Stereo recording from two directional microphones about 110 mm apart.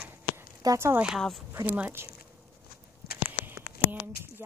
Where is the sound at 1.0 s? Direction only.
5° right (ahead or behind).